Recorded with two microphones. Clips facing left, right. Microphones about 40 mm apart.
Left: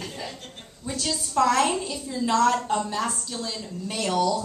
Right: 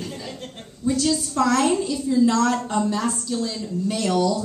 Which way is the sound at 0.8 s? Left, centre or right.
Centre.